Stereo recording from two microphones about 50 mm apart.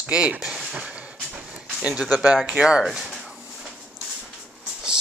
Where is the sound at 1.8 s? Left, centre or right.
Centre.